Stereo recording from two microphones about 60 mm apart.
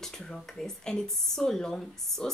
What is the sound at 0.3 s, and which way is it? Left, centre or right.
A woman's voice, centre.